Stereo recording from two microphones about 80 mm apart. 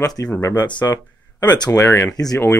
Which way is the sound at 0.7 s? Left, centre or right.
Left.